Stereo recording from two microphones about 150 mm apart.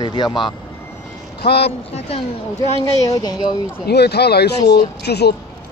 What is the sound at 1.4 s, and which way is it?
Speech, 90° left.